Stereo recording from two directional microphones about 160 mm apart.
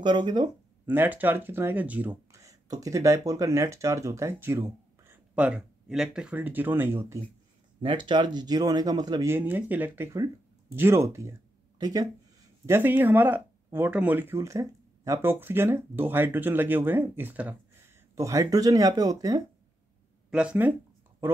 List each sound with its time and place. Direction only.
0.0 s speech: 30° right (ahead or behind)
0.8 s speech: 10° right (ahead or behind)
7.8 s speech: 30° right (ahead or behind); by 17.6 s 10° right (ahead or behind)
18.1 s speech: 20° right (ahead or behind)
20.2 s speech: 5° right (ahead or behind)